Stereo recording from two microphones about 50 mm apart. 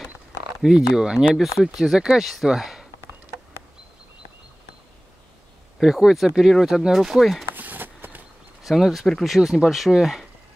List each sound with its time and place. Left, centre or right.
0.7 s speech: centre
5.8 s speech: centre
7.5 s a sound: right
8.6 s speech: centre